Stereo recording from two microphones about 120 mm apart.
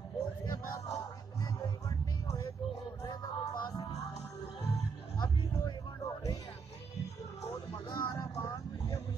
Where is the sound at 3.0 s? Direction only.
30° left (ahead or behind).